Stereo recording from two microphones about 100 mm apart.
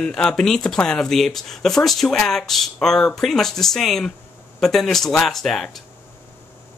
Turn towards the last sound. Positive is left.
turn(degrees=0)  # may be behind; listen again after turning